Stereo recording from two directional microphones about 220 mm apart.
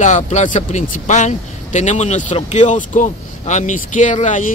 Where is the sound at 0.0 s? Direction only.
30° left (ahead or behind).